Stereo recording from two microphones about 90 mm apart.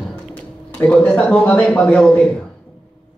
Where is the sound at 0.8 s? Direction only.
15° left (ahead or behind).